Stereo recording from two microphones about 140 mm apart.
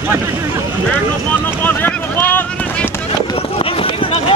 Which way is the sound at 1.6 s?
15° left (ahead or behind).